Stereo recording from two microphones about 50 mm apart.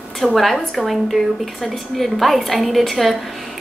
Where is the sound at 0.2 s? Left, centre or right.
Centre.